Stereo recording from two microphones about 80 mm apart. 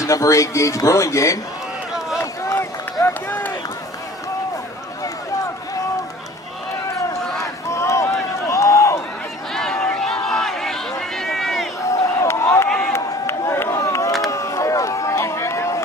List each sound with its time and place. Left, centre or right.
0.0 s speech: left
2.1 s run: left
3.1 s run: left
7.6 s run: left
9.6 s a sound: centre
11.2 s run: centre
11.9 s a sound: left
12.9 s run: left